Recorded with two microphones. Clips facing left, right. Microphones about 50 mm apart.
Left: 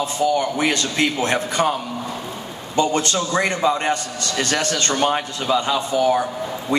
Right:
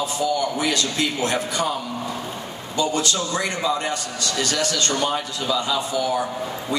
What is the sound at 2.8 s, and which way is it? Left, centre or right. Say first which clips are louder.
A man's voice: left 3 dB; left.